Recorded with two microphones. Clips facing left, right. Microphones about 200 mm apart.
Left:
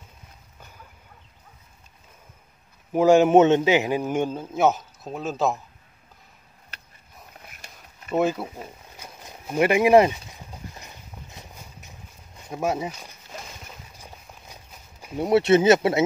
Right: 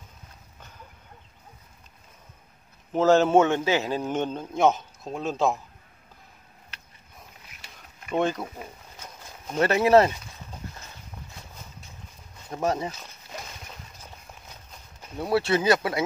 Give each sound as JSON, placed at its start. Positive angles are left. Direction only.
{"t": 2.9, "sound": "a man's voice", "side_deg": 15}
{"t": 7.4, "sound": "a sound", "side_deg": 50}
{"t": 8.1, "sound": "a man's voice", "side_deg": 5}
{"t": 8.9, "sound": "a sound", "side_deg": 10}
{"t": 12.4, "sound": "a man's voice", "side_deg": 10}
{"t": 15.1, "sound": "speech", "side_deg": 20}